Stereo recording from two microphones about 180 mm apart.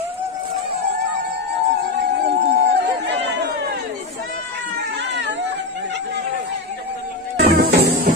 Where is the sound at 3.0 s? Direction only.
70° right (ahead or behind).